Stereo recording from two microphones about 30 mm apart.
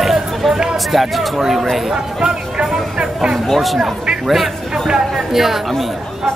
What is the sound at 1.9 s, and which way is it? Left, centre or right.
Speech, right.